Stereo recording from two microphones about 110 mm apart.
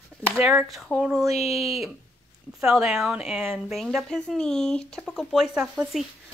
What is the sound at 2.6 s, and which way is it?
Speech, 5° right (ahead or behind).